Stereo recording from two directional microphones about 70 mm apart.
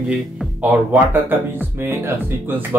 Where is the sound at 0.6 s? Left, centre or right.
Right.